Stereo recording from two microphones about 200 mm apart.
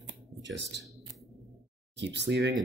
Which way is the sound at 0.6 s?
60° right (ahead or behind).